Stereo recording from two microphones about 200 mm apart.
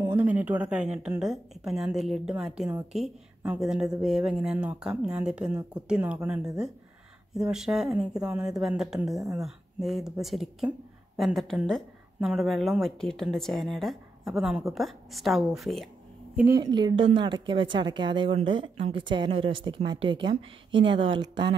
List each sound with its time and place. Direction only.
0.0 s a woman's voice: 10° right (ahead or behind)
16.3 s a woman's voice: 15° right (ahead or behind)